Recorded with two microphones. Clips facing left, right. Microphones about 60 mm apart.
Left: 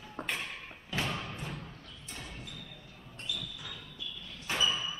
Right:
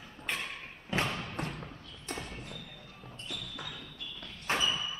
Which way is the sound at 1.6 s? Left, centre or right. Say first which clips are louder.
Right 2 dB; right.